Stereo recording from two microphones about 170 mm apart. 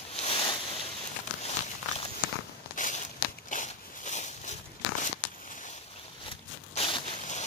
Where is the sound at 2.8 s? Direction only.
45° left (ahead or behind).